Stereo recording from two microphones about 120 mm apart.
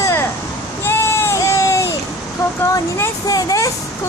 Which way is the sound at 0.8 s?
20° left (ahead or behind).